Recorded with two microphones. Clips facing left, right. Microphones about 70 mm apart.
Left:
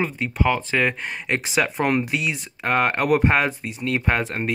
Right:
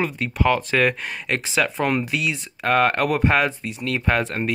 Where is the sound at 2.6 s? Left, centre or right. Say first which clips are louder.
Right 1 dB; centre.